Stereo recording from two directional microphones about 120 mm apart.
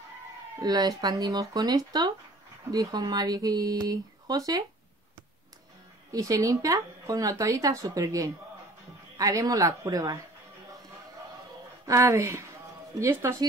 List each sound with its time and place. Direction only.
0.6 s speech: 35° right (ahead or behind)
6.1 s speech: 30° right (ahead or behind)
11.8 s speech: 25° right (ahead or behind)